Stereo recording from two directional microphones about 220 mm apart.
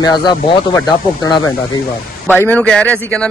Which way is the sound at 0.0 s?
20° left (ahead or behind).